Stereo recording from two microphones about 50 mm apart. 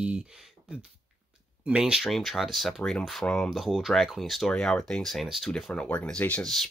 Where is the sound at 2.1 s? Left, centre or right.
Centre.